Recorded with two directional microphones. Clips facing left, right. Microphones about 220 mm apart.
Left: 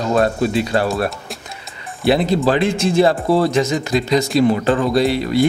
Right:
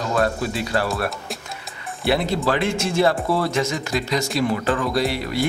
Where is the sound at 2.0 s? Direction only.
20° left (ahead or behind).